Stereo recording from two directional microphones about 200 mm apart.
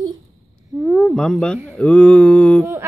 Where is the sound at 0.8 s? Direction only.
Centre (ahead or behind).